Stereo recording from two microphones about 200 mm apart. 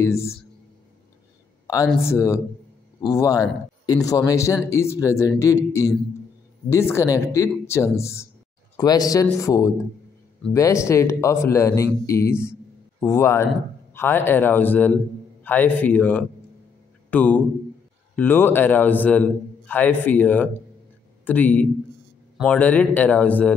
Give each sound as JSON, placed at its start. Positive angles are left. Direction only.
{"t": 0.0, "sound": "a man's voice", "side_deg": 15}
{"t": 2.0, "sound": "a man's voice", "side_deg": 15}